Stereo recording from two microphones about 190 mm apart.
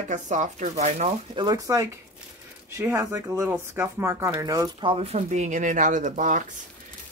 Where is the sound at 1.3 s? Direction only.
20° right (ahead or behind).